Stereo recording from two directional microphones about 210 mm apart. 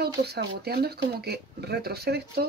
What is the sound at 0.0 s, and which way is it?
Speech, 50° right (ahead or behind).